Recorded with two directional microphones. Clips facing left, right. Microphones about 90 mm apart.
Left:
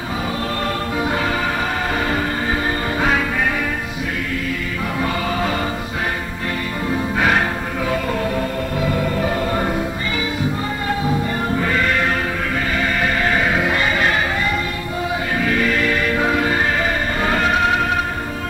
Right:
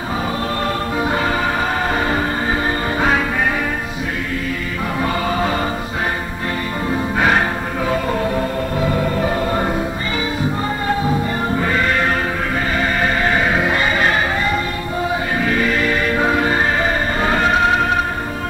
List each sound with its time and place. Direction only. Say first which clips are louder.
0.7 s music: right 1 dB; 35° right (ahead or behind)
5.0 s music: right 2 dB; 35° right (ahead or behind)
7.2 s music: right 2 dB; 35° right (ahead or behind)
11.7 s music: right 2 dB; 30° right (ahead or behind)